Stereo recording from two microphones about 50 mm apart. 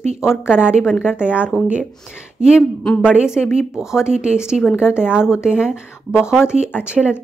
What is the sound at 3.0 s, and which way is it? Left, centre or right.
Speech, centre.